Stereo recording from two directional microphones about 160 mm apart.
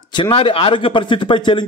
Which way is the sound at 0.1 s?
30° left (ahead or behind).